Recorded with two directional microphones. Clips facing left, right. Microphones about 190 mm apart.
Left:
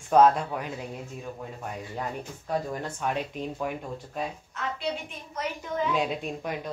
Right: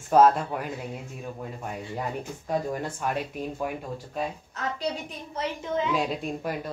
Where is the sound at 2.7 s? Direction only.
10° right (ahead or behind).